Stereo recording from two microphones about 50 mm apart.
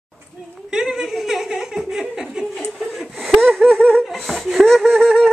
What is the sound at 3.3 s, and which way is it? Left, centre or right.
Wheeze, centre.